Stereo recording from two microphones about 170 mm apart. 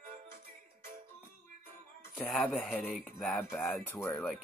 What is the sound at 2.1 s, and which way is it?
Speech, centre (ahead or behind).